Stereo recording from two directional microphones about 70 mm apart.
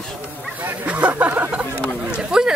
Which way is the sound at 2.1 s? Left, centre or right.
Centre.